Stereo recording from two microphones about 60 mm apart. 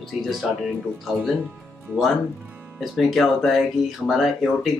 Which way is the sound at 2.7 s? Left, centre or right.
Centre.